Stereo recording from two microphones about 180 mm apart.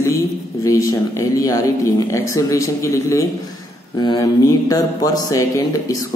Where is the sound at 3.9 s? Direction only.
20° left (ahead or behind).